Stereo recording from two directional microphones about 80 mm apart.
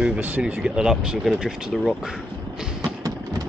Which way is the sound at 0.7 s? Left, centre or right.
Centre.